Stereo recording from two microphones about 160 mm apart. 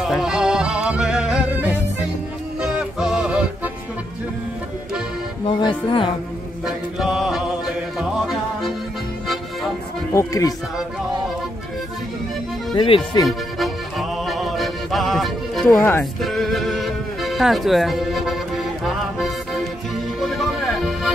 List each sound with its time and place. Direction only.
0.2 s music: 5° right (ahead or behind)
5.6 s speech: 30° left (ahead or behind)
6.6 s music: 5° right (ahead or behind)
10.1 s speech: 20° left (ahead or behind)
12.7 s speech: 35° left (ahead or behind)
13.3 s music: centre (ahead or behind)
15.6 s speech: 15° left (ahead or behind)
16.2 s music: centre (ahead or behind)